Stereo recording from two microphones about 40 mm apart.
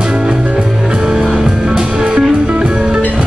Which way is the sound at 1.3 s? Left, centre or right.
Right.